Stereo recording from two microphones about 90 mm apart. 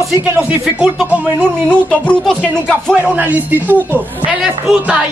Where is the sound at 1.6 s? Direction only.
10° left (ahead or behind).